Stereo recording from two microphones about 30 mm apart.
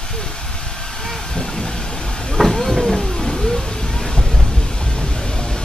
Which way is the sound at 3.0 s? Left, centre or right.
Centre.